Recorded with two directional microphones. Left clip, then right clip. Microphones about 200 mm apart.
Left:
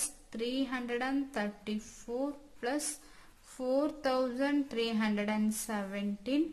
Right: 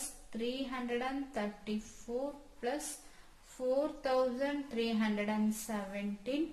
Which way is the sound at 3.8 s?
35° left (ahead or behind).